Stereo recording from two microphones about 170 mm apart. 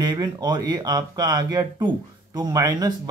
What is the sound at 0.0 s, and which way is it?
Speech, 25° right (ahead or behind).